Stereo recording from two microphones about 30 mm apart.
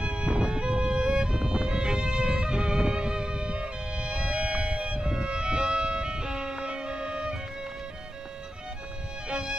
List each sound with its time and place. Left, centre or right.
0.0 s music: right
9.3 s music: centre